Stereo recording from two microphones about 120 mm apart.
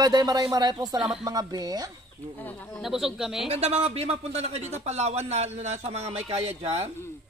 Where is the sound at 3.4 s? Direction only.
60° right (ahead or behind).